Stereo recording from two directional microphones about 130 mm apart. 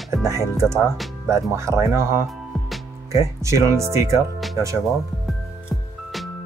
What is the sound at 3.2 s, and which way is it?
Speech, 20° right (ahead or behind).